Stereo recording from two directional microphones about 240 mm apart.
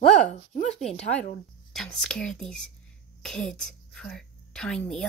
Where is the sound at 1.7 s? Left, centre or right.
Centre.